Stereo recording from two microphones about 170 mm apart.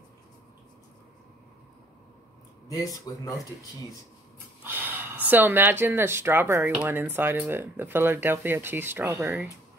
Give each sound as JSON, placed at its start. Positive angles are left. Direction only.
{"t": 2.7, "sound": "speech", "side_deg": 20}
{"t": 4.6, "sound": "speech", "side_deg": -10}